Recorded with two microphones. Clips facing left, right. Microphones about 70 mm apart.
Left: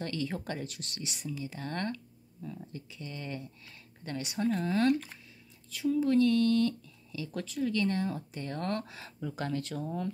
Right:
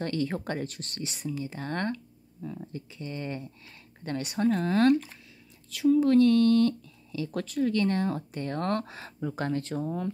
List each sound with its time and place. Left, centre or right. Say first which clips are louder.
0.0 s speech: right 5 dB; right
4.0 s speech: right 5 dB; right
5.7 s speech: right 6 dB; right